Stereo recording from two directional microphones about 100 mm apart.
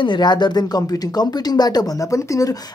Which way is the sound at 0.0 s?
50° left (ahead or behind).